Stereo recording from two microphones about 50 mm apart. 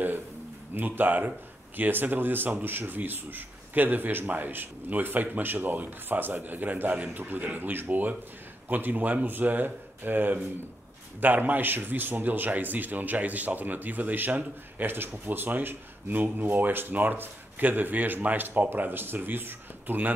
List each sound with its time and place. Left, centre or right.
0.7 s a man's voice: right